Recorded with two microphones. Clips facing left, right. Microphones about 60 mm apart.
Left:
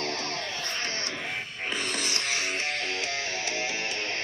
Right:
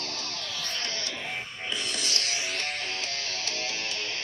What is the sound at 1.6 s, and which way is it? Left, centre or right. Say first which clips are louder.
Music: left 4 dB; left.